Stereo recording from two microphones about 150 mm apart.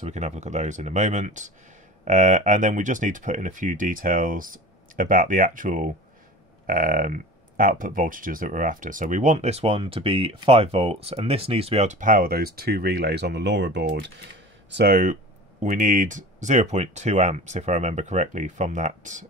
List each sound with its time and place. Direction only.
0.0 s speech: 50° right (ahead or behind); by 13.4 s 90° right
14.8 s speech: 75° right (ahead or behind)
15.6 s speech: 60° right (ahead or behind)